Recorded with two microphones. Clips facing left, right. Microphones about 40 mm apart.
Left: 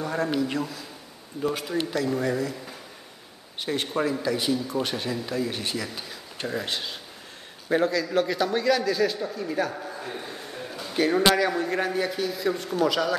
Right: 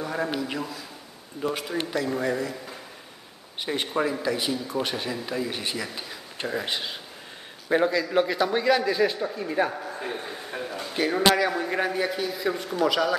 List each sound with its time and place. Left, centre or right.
0.0 s a man's voice: centre
10.1 s a sound: centre
10.9 s a man's voice: centre